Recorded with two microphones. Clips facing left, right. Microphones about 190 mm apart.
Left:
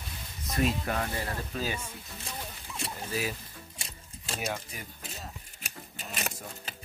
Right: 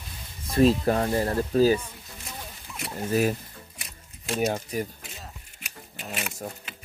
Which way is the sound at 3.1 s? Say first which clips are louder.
Right 11 dB; 50° right (ahead or behind).